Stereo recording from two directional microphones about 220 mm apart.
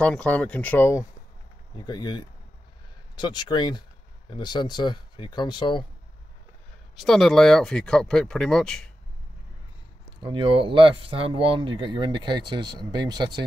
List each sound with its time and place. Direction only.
0.0 s speech: 5° left (ahead or behind); by 5.9 s 20° left (ahead or behind)
7.0 s speech: centre (ahead or behind)
10.2 s speech: 20° right (ahead or behind)